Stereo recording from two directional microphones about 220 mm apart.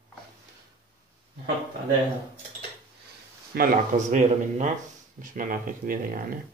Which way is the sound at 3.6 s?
35° right (ahead or behind).